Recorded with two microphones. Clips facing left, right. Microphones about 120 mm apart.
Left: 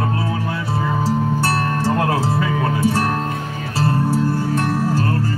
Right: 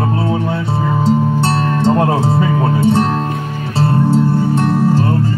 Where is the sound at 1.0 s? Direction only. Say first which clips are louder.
Right 7 dB; 25° right (ahead or behind).